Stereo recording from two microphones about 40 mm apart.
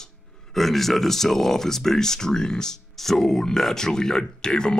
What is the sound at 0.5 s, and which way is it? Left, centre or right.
Speech, centre.